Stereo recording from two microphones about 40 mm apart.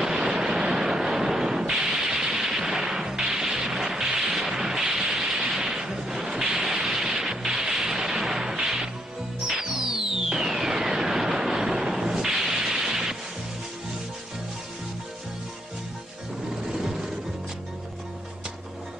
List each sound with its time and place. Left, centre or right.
0.0 s a sound: centre
9.5 s music: centre
16.6 s music: centre